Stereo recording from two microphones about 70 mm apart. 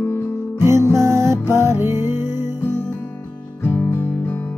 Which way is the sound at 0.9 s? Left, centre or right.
Right.